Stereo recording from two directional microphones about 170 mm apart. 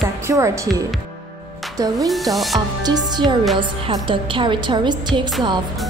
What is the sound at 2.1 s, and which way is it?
Speech, centre (ahead or behind).